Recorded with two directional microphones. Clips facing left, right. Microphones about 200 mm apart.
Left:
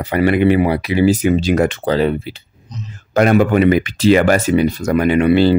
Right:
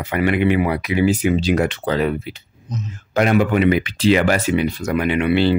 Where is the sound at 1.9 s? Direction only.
30° left (ahead or behind).